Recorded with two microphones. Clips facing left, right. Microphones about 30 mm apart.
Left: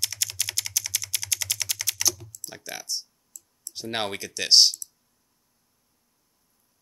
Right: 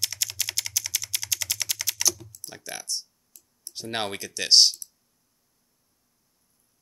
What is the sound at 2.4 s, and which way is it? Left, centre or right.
Speech, centre.